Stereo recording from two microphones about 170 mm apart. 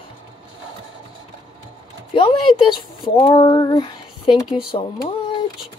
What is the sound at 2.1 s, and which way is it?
Speech, 30° left (ahead or behind).